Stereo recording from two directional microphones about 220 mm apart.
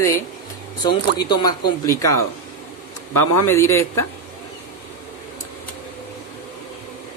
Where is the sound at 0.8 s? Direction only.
20° left (ahead or behind).